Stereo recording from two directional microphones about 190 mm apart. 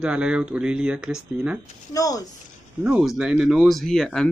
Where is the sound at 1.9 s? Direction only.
20° left (ahead or behind).